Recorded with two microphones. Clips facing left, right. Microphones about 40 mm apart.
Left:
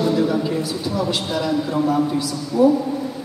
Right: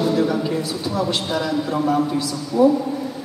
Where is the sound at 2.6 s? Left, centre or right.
Right.